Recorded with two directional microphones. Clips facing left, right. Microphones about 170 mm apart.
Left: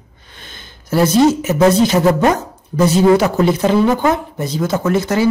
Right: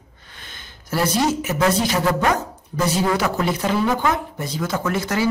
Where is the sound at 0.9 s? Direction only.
25° left (ahead or behind).